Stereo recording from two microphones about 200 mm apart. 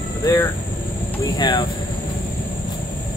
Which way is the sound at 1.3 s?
20° left (ahead or behind).